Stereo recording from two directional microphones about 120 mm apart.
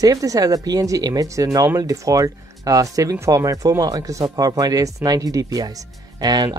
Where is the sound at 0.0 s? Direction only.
30° right (ahead or behind).